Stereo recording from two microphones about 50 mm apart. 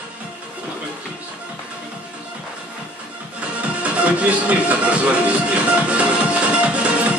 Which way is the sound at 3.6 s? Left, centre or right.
Right.